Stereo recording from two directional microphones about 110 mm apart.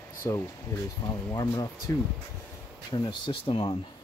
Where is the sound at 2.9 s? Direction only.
45° left (ahead or behind).